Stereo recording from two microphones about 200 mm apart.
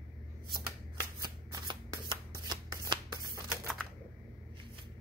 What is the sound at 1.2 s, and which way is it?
Shuffling cards, 20° right (ahead or behind).